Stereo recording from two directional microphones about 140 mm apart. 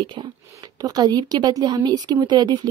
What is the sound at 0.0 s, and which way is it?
A woman's voice, 35° right (ahead or behind).